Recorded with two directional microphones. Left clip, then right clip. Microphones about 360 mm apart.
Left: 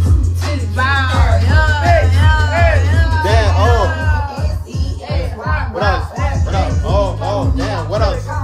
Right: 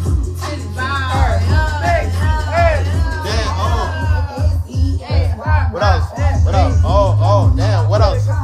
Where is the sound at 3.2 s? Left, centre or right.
Centre.